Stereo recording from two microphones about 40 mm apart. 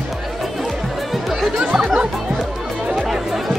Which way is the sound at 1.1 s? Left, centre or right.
Centre.